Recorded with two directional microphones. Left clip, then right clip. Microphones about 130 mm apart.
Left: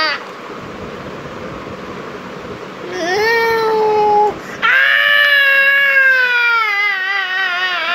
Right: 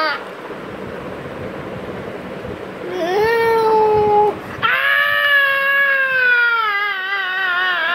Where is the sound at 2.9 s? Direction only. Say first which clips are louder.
Left 2 dB; 25° right (ahead or behind).